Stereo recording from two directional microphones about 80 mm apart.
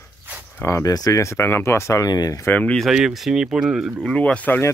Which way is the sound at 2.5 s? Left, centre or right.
Centre.